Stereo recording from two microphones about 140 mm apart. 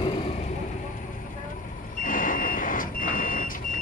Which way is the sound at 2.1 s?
75° left (ahead or behind).